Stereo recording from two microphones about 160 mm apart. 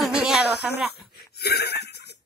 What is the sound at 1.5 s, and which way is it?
Laughter, 90° left.